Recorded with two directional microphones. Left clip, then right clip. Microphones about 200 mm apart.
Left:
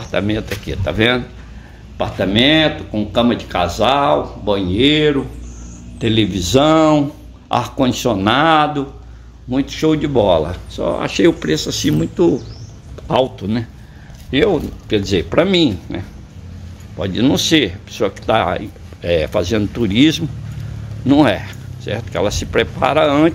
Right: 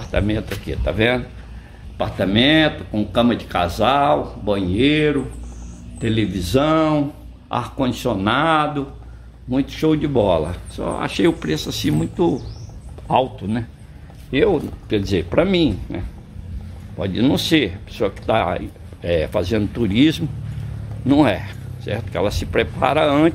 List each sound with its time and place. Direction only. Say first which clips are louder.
0.0 s speech: left 3 dB; 10° left (ahead or behind)